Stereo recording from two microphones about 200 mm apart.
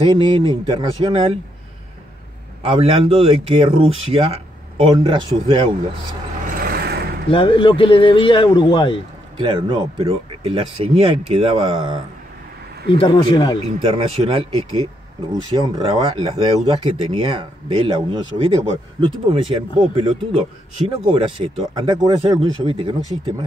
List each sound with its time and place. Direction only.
0.0 s speech: 20° right (ahead or behind)
2.6 s speech: 30° right (ahead or behind)
6.5 s vehicle: 50° right (ahead or behind)
7.2 s speech: 25° left (ahead or behind)
9.4 s speech: 25° right (ahead or behind)
12.9 s speech: 25° left (ahead or behind)
13.7 s speech: 30° right (ahead or behind)